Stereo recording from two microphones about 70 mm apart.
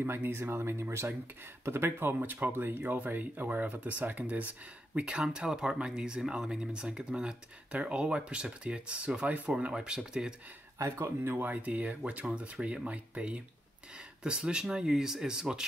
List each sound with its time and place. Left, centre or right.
0.0 s speech: right; by 10.3 s centre
10.9 s speech: right
11.3 s speech: right